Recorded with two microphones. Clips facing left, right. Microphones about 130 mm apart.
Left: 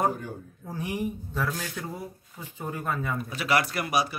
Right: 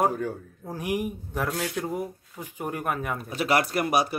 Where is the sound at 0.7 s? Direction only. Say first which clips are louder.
Right 2 dB; 15° right (ahead or behind).